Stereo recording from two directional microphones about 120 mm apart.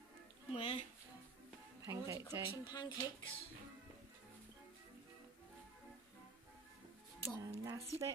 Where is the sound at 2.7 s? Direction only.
35° left (ahead or behind).